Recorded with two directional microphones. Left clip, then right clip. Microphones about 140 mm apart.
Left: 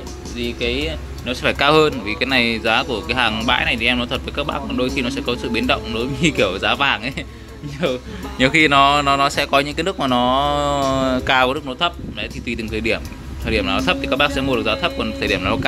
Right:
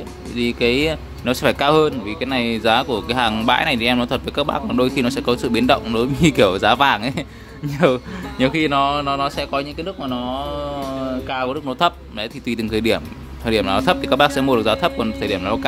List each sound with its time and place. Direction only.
0.4 s speech: 55° right (ahead or behind)
1.6 s speech: 15° right (ahead or behind)
2.6 s speech: 25° right (ahead or behind)
8.4 s speech: 10° right (ahead or behind)
9.9 s speech: 15° left (ahead or behind)
11.6 s speech: 35° right (ahead or behind); by 15.6 s 15° right (ahead or behind)